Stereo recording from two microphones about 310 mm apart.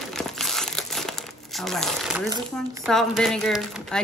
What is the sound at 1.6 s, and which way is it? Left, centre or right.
Speech, centre.